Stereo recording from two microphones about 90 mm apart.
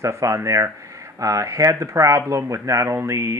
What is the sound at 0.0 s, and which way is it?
Speech, 35° right (ahead or behind).